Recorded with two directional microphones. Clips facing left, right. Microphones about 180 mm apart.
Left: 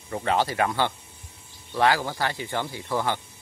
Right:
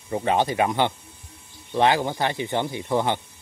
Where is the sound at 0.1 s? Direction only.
20° right (ahead or behind).